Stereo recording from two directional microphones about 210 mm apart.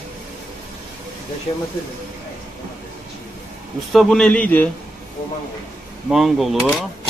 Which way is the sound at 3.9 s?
Centre (ahead or behind).